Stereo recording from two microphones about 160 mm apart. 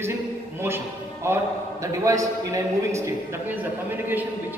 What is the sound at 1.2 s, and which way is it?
A man's voice, 15° right (ahead or behind).